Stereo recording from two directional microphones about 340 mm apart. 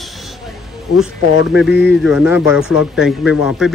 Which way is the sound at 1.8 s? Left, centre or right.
Centre.